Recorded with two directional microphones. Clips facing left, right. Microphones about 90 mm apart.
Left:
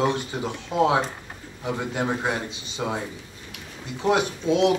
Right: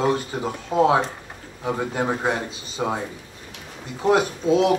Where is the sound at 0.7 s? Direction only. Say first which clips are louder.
Right 3 dB; 35° right (ahead or behind).